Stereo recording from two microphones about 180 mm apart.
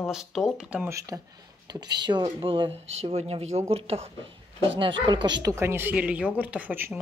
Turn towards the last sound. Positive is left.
turn(degrees=-10)  # may be behind; listen again after turning